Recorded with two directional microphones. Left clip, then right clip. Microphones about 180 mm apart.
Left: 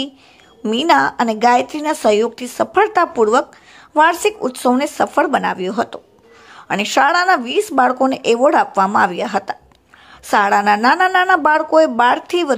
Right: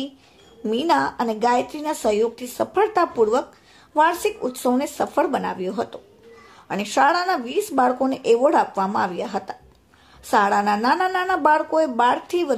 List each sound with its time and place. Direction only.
0.7 s speech: 20° left (ahead or behind)